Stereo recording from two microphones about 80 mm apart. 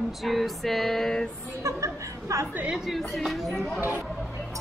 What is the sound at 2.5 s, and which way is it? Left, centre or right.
Speech, right.